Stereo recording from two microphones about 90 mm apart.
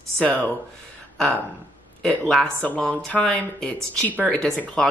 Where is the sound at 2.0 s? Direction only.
5° left (ahead or behind).